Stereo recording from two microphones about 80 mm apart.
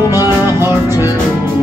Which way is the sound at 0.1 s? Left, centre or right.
Right.